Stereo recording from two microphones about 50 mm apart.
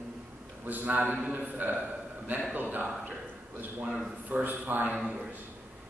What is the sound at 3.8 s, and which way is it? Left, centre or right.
Speech, centre.